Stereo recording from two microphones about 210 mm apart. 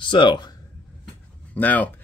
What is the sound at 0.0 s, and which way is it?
Speech, 25° left (ahead or behind).